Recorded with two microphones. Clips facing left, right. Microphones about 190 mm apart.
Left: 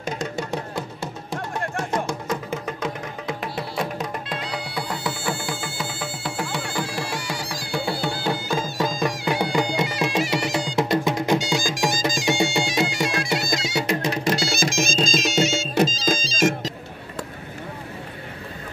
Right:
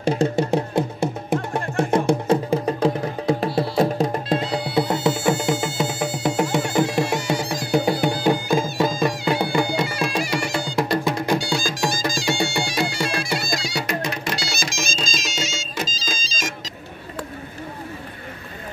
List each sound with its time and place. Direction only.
0.0 s music: 30° right (ahead or behind); by 9.1 s 15° right (ahead or behind)
9.2 s music: 15° left (ahead or behind); by 16.7 s 55° left (ahead or behind)